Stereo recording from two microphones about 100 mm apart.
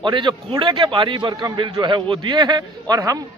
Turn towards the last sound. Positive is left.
turn(degrees=-40)  # may be behind; listen again after turning